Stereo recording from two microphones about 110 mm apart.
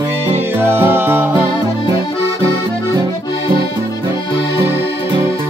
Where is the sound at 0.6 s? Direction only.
20° right (ahead or behind).